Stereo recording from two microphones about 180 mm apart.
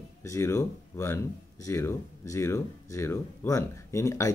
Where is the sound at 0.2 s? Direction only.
15° left (ahead or behind).